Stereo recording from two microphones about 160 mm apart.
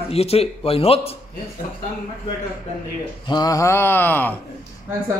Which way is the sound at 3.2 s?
25° left (ahead or behind).